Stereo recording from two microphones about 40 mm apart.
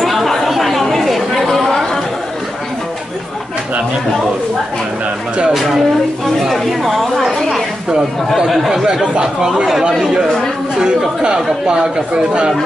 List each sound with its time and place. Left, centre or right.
0.0 s chatter: centre
5.5 s a sound: centre
8.6 s speech: centre
10.8 s speech: right